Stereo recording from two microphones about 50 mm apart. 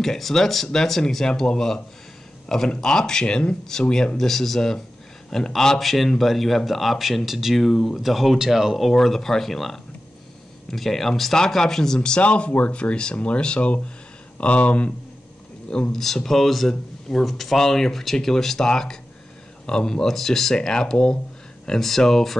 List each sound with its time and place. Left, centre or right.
0.0 s a man's voice: centre
8.9 s a man's voice: centre
12.2 s speech: left
15.9 s a man's voice: centre